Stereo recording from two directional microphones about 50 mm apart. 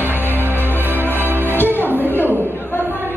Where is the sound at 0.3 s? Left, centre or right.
Right.